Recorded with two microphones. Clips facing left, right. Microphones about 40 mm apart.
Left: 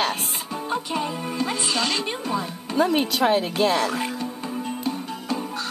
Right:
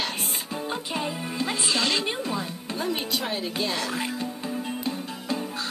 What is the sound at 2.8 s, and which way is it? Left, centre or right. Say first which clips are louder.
Speech: left 9 dB; left.